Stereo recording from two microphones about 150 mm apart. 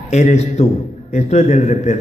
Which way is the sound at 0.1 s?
50° left (ahead or behind).